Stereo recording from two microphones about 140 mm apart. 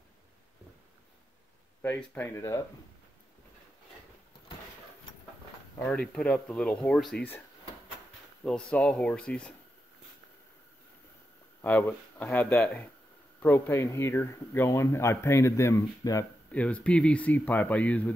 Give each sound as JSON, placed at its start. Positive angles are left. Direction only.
{"t": 1.8, "sound": "speech", "side_deg": 10}
{"t": 5.8, "sound": "speech", "side_deg": 5}
{"t": 8.5, "sound": "speech", "side_deg": 5}
{"t": 11.6, "sound": "speech", "side_deg": 10}
{"t": 16.5, "sound": "speech", "side_deg": 10}